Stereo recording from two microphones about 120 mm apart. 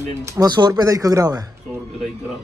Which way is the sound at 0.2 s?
25° right (ahead or behind).